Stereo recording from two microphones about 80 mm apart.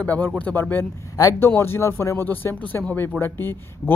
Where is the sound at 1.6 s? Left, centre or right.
Left.